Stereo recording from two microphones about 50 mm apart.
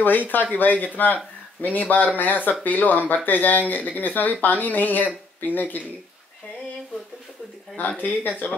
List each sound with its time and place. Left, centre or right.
0.3 s speech: left
8.0 s speech: left